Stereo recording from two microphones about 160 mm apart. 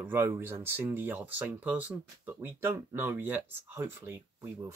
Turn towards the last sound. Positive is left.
turn(degrees=-20)  # may be behind; listen again after turning